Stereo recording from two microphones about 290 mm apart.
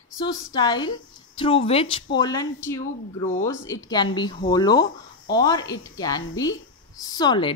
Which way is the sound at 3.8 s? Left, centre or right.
Centre.